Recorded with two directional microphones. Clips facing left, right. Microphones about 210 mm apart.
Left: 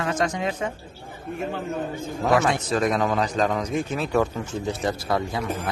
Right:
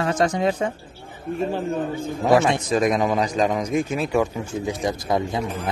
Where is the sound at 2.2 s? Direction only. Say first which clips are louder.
Right 3 dB; 30° right (ahead or behind).